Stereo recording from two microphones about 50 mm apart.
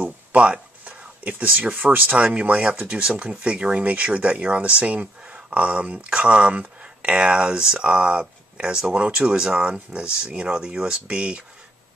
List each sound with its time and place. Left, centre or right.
0.0 s speech: right